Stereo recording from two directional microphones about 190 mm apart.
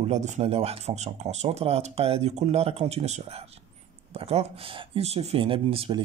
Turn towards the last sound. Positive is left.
turn(degrees=-30)  # may be behind; listen again after turning